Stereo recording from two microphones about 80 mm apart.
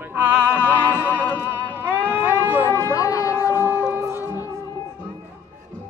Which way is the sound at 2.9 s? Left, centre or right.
Left.